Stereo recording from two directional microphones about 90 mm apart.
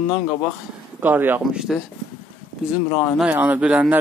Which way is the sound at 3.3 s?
20° right (ahead or behind).